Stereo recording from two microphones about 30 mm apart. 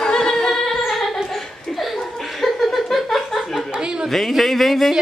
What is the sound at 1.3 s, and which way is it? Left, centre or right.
Chuckle, centre.